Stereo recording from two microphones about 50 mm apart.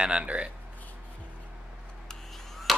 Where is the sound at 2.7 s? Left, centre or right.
Centre.